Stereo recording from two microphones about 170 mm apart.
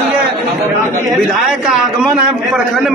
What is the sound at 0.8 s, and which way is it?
Speech, 45° right (ahead or behind).